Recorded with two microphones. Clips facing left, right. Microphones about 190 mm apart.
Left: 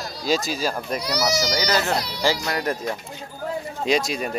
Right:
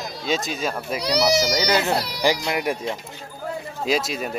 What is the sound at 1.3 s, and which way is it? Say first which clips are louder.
Speech: right 1 dB; 25° right (ahead or behind).